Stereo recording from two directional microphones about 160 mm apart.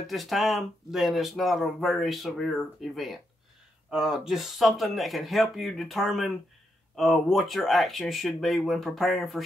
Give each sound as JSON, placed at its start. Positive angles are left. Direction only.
{"t": 0.0, "sound": "speech", "side_deg": 0}